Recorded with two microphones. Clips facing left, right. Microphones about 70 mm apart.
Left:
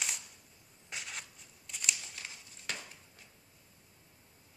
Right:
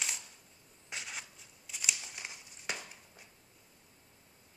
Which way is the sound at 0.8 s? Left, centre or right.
Centre.